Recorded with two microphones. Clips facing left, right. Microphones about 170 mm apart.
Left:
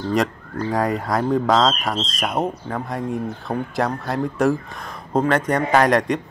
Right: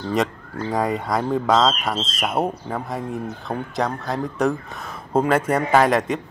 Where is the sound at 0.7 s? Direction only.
Centre (ahead or behind).